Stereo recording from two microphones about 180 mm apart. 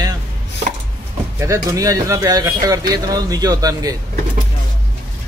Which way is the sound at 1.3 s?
15° right (ahead or behind).